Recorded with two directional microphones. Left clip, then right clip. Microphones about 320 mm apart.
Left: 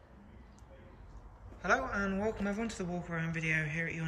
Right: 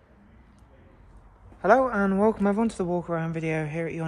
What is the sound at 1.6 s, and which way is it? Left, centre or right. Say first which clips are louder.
Speech: right 11 dB; centre.